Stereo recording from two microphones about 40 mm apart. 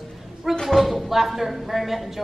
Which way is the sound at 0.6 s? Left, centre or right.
Centre.